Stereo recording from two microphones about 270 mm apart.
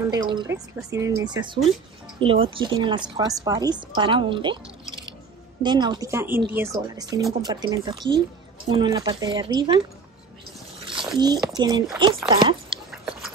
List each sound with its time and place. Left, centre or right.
0.1 s speech: centre
11.1 s speech: centre
12.9 s biting: centre